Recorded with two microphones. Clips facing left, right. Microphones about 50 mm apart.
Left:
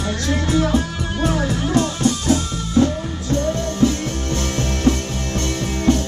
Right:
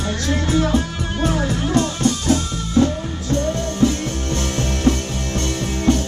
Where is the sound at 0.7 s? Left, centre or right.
Centre.